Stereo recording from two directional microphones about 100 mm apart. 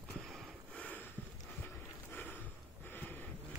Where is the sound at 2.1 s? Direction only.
20° left (ahead or behind).